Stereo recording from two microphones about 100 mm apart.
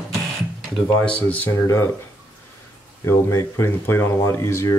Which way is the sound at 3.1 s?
25° left (ahead or behind).